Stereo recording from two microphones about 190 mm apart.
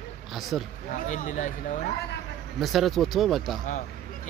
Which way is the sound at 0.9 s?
40° left (ahead or behind).